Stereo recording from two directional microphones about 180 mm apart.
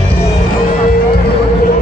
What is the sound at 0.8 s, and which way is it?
Music, 55° left (ahead or behind).